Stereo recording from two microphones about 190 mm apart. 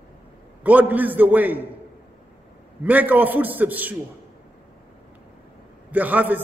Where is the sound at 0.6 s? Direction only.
10° right (ahead or behind).